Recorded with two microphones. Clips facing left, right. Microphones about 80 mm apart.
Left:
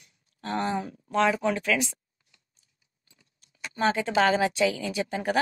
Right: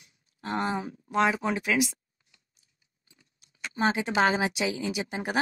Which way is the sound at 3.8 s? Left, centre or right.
Centre.